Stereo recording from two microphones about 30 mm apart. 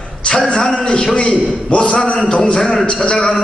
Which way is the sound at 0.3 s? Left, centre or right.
Left.